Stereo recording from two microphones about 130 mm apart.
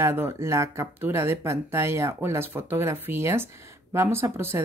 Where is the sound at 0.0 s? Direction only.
20° right (ahead or behind).